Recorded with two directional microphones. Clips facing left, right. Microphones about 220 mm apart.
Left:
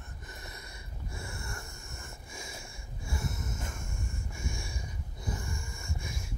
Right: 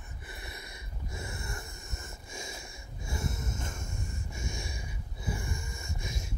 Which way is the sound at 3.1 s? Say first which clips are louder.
Right 1 dB; 25° right (ahead or behind).